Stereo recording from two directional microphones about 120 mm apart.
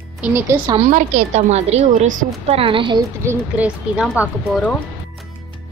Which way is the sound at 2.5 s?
50° right (ahead or behind).